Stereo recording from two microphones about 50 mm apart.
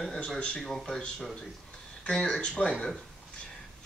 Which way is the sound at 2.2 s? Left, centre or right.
Centre.